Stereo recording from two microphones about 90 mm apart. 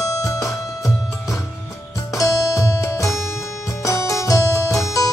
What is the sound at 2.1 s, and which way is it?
Music, 35° left (ahead or behind).